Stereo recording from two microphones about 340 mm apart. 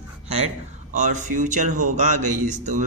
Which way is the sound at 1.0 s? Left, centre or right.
Right.